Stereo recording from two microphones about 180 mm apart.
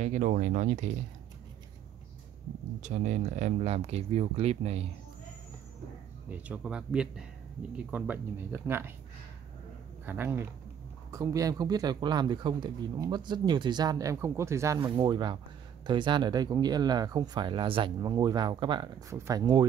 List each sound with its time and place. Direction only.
0.0 s speech: 45° right (ahead or behind)
2.8 s speech: 45° right (ahead or behind)
6.3 s speech: 10° right (ahead or behind)
10.0 s speech: 10° right (ahead or behind)